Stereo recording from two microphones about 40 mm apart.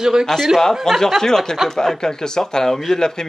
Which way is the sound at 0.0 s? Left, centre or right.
Centre.